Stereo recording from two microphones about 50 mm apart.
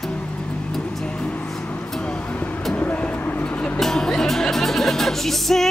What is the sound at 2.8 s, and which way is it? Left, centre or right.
Vehicle, left.